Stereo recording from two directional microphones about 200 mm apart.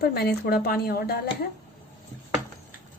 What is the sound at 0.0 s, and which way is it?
Speech, 50° left (ahead or behind).